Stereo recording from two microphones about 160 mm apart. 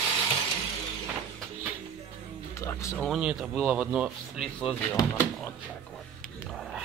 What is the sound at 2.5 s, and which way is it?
Music, 20° left (ahead or behind).